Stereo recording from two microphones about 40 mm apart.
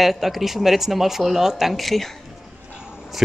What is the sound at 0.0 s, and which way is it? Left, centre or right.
Speech, centre.